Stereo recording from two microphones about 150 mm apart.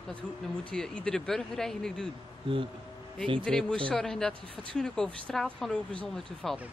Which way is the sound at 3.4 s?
5° left (ahead or behind).